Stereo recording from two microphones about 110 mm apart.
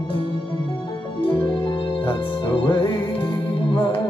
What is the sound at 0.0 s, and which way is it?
Music, 50° left (ahead or behind).